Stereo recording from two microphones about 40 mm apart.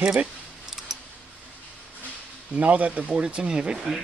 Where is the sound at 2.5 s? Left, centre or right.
Right.